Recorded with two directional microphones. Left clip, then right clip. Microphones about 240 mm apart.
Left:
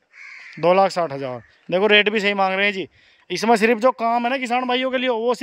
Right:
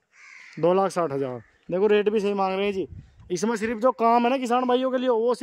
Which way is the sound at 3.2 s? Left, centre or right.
Left.